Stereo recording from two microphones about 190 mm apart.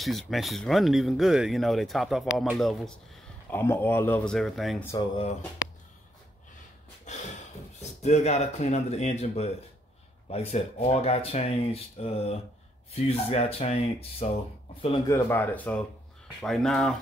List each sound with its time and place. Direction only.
0.0 s speech: centre (ahead or behind)
3.4 s speech: 10° left (ahead or behind)
4.8 s speech: 25° left (ahead or behind)
7.1 s a sound: 40° left (ahead or behind)
8.0 s speech: 35° left (ahead or behind)
15.0 s speech: 15° left (ahead or behind)